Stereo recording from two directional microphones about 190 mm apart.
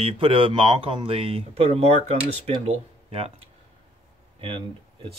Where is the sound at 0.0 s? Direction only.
30° right (ahead or behind).